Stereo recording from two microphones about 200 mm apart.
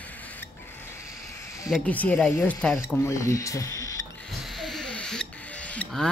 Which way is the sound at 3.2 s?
15° left (ahead or behind).